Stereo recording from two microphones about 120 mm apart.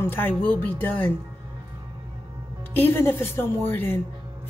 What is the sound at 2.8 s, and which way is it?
Speech, 15° left (ahead or behind).